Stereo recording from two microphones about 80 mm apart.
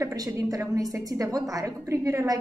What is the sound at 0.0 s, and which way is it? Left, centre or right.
A woman's voice, right.